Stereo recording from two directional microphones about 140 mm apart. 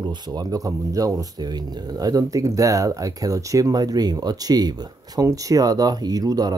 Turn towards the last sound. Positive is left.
turn(degrees=-25)  # may be behind; listen again after turning